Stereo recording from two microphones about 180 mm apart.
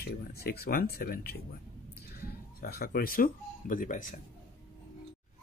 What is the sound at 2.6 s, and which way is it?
Speech, 55° left (ahead or behind).